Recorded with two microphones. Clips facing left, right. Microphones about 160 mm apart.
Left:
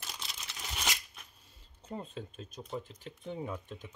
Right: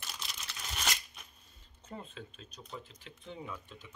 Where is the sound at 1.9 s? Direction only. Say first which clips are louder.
Left 5 dB; 45° left (ahead or behind).